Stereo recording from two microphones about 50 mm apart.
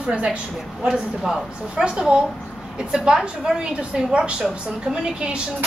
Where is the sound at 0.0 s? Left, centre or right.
Right.